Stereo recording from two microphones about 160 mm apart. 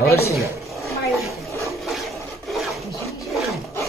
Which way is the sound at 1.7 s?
Centre (ahead or behind).